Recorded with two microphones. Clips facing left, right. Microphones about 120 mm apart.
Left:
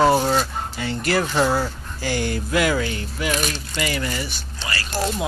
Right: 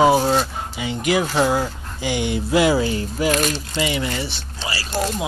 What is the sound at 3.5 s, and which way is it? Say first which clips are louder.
Speech: right 3 dB; 20° right (ahead or behind).